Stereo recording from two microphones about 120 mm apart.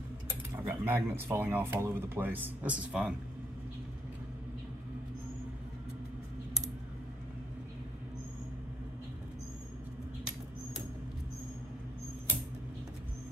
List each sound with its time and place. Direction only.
0.3 s speech: 15° right (ahead or behind)